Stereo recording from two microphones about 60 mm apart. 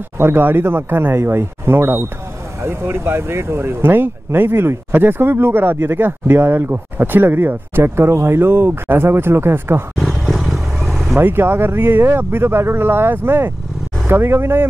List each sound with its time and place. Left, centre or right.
0.2 s speech: right
9.9 s vehicle: centre
11.1 s speech: right